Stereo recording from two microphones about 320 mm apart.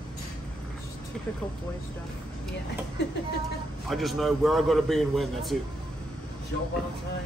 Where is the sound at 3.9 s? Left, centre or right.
Centre.